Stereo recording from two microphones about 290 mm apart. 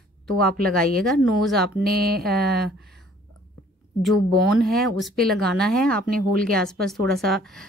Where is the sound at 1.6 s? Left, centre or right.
Right.